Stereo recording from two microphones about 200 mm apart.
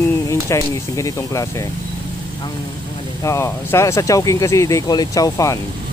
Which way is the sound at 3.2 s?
15° left (ahead or behind).